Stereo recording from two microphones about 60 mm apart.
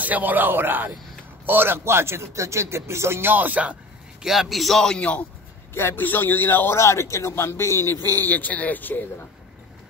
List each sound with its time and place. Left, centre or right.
0.0 s a man's voice: right
4.2 s a man's voice: centre
4.9 s a man's voice: left
5.8 s a man's voice: left
6.7 s speech: left